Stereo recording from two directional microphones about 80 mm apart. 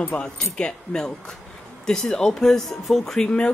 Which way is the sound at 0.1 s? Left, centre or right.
Centre.